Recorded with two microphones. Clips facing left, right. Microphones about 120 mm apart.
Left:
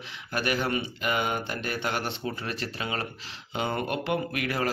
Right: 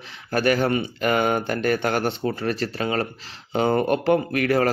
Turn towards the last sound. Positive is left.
turn(degrees=-45)  # may be behind; listen again after turning